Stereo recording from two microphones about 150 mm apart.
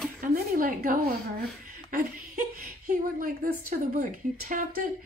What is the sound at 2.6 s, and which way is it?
A woman's voice, 75° right (ahead or behind).